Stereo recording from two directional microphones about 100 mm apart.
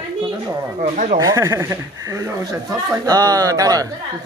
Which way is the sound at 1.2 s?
30° right (ahead or behind).